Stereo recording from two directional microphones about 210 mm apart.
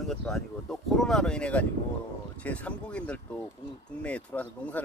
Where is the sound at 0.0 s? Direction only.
Centre (ahead or behind).